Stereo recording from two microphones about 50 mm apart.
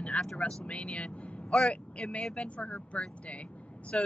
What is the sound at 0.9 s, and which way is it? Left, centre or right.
Speech, centre.